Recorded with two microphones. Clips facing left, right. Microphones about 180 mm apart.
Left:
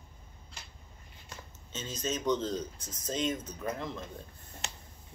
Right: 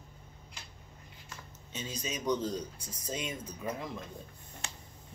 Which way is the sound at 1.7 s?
15° right (ahead or behind).